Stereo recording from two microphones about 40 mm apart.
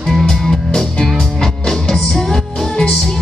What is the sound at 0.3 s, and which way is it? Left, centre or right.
Music, centre.